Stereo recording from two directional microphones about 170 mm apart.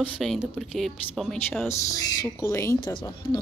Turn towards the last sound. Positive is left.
turn(degrees=25)  # may be behind; listen again after turning